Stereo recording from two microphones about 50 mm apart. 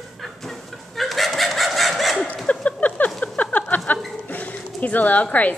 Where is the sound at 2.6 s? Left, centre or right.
Left.